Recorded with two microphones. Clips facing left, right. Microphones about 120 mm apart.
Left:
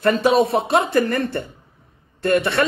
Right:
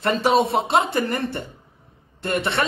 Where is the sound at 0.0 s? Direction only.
25° right (ahead or behind).